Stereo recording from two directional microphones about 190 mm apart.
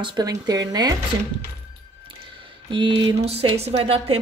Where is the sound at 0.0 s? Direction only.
20° right (ahead or behind).